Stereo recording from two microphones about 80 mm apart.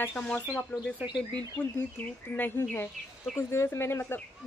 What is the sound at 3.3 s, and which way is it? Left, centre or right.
Speech, left.